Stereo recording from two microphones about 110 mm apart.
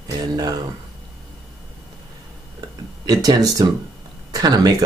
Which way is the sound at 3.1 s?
35° right (ahead or behind).